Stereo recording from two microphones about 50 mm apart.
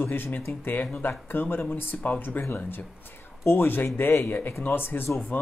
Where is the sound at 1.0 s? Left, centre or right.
Left.